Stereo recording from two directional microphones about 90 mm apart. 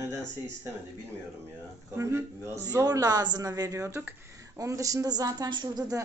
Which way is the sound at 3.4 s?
40° right (ahead or behind).